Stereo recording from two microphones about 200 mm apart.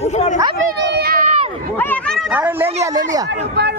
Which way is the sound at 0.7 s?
55° right (ahead or behind).